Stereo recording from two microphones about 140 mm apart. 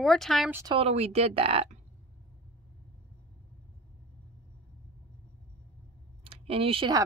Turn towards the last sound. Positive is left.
turn(degrees=-40)  # may be behind; listen again after turning